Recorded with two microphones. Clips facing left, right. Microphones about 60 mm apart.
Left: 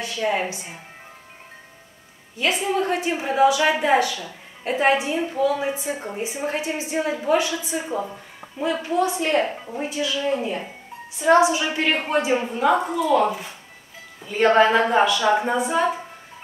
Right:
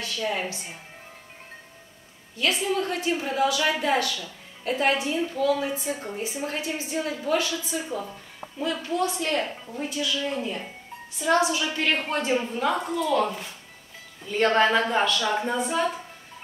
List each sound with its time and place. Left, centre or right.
0.0 s a woman's voice: left
2.3 s a woman's voice: left